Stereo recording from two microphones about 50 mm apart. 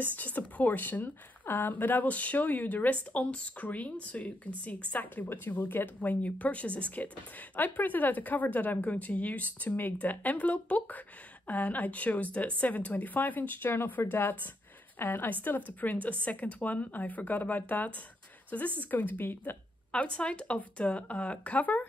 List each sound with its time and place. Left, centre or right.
0.0 s a woman's voice: left
19.9 s speech: left